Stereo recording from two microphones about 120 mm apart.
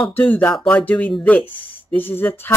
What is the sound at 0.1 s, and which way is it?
Speech, 15° left (ahead or behind).